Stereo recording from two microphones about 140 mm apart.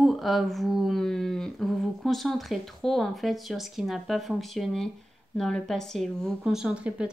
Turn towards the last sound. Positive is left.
turn(degrees=-10)  # may be behind; listen again after turning